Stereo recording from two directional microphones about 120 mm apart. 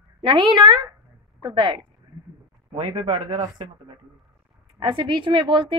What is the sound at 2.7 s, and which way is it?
Speech, 65° right (ahead or behind).